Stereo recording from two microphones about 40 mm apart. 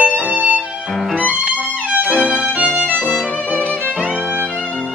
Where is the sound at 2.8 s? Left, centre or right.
Right.